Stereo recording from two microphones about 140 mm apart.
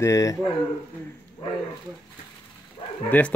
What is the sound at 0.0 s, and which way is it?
Speech, 25° left (ahead or behind).